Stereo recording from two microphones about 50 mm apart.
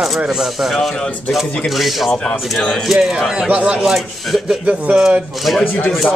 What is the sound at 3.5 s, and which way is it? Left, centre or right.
Speech, right.